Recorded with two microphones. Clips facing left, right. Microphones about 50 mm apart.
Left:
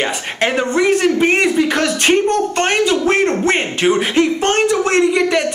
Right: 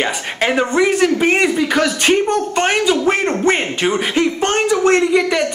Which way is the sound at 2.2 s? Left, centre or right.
Centre.